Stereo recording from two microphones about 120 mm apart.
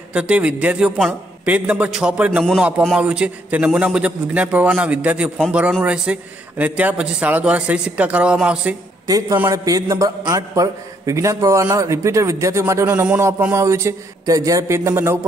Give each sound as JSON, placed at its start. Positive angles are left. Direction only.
{"t": 0.1, "sound": "a man's voice", "side_deg": -10}
{"t": 9.0, "sound": "a man's voice", "side_deg": -30}